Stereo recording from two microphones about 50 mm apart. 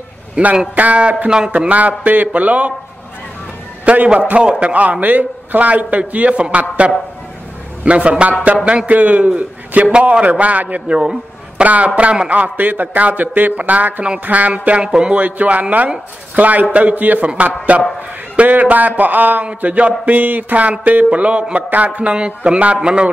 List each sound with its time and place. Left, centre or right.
0.4 s a man's voice: right
1.7 s a man's voice: right
3.8 s a man's voice: right
7.8 s a man's voice: right
10.9 s a man's voice: centre
11.6 s a man's voice: right
12.5 s a man's voice: right
14.9 s music: centre
15.1 s a man's voice: right